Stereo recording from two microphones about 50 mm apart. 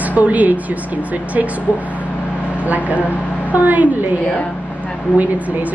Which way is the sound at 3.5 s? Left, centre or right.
Right.